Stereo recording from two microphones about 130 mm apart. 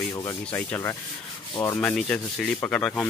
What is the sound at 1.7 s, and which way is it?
Speech, 5° left (ahead or behind).